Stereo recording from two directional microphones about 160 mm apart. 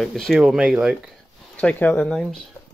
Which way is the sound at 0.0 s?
Centre (ahead or behind).